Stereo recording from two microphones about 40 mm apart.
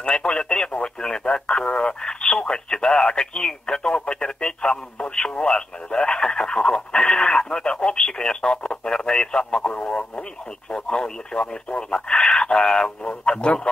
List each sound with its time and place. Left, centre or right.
0.0 s speech: left
9.6 s speech: left